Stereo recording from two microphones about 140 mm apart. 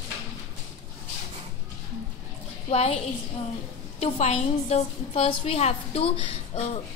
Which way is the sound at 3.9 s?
50° left (ahead or behind).